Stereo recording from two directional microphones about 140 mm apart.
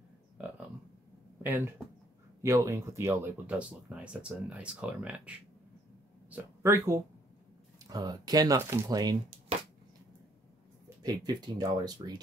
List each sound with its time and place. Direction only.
1.4 s speech: 15° right (ahead or behind)
6.3 s speech: 20° right (ahead or behind)
11.0 s speech: 30° right (ahead or behind)